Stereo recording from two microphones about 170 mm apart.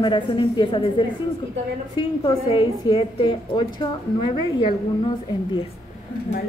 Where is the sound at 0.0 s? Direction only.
30° left (ahead or behind).